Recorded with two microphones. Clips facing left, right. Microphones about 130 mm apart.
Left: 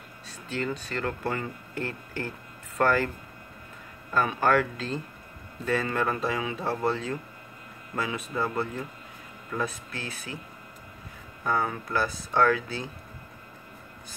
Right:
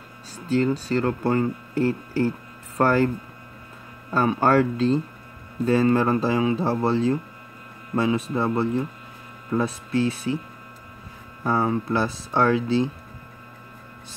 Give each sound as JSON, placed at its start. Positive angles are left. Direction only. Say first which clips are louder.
{"t": 0.5, "sound": "speech", "louder": "right 10 dB", "side_deg": -35}
{"t": 4.1, "sound": "speech", "louder": "right 4 dB", "side_deg": -30}
{"t": 11.4, "sound": "speech", "louder": "right 6 dB", "side_deg": -30}